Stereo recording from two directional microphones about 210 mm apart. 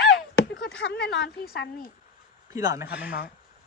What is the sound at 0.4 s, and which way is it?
Speech, 55° left (ahead or behind).